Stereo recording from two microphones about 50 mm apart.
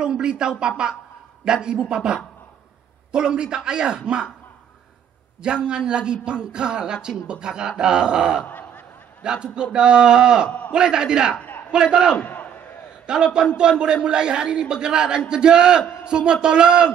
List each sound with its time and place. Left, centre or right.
0.0 s a woman's voice: centre
3.1 s speech: centre
5.4 s speech: centre
8.5 s a sound: left
9.2 s speech: centre
11.3 s a sound: left
11.7 s speech: centre
12.2 s crowd: left
13.0 s a man's voice: centre